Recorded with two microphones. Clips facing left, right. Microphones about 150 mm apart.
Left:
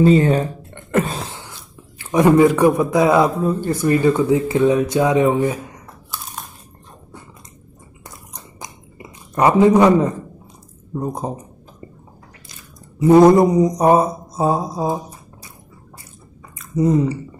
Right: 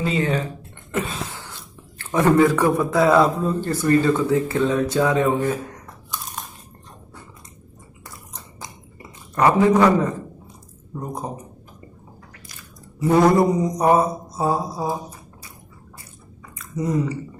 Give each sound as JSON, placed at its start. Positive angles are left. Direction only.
{"t": 0.0, "sound": "speech", "side_deg": 40}
{"t": 1.2, "sound": "a sound", "side_deg": 20}
{"t": 2.1, "sound": "a man's voice", "side_deg": 15}
{"t": 6.1, "sound": "crunch", "side_deg": 0}
{"t": 8.3, "sound": "chewing", "side_deg": 15}
{"t": 11.0, "sound": "mantra", "side_deg": 25}
{"t": 13.0, "sound": "mantra", "side_deg": 20}
{"t": 16.7, "sound": "mantra", "side_deg": 25}